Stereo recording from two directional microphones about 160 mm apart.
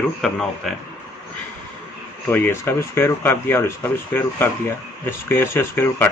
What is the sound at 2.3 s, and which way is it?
Speech, 15° left (ahead or behind).